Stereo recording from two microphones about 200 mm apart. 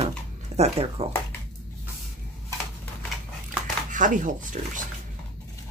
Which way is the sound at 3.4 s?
40° right (ahead or behind).